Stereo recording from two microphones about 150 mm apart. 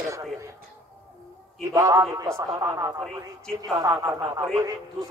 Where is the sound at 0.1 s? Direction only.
20° right (ahead or behind).